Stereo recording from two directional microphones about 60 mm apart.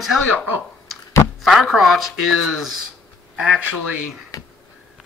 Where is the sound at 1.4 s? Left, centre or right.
Centre.